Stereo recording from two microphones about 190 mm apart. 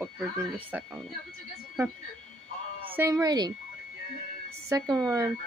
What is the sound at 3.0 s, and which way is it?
Speech, 20° right (ahead or behind).